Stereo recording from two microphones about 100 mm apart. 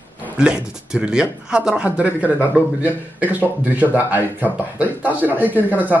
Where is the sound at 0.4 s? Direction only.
10° right (ahead or behind).